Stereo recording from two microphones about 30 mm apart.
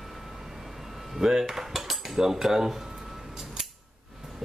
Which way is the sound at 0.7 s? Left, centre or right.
Centre.